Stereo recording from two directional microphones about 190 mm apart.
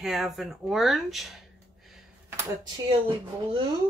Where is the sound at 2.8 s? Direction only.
25° right (ahead or behind).